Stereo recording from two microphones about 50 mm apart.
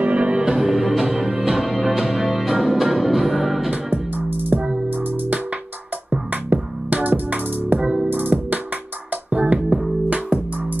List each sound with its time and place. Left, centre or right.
0.0 s music: right
0.4 s music: centre
3.7 s music: right
7.8 s music: centre
8.1 s music: right